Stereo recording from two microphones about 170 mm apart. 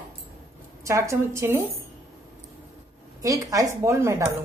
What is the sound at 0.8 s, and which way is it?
Speech, 15° right (ahead or behind).